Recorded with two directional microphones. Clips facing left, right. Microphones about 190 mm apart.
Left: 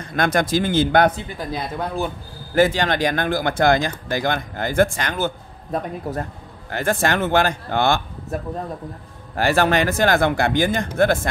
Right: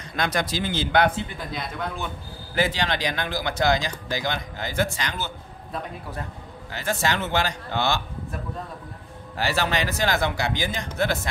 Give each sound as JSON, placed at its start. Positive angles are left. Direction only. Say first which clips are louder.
{"t": 0.0, "sound": "speech", "louder": "left 6 dB", "side_deg": 50}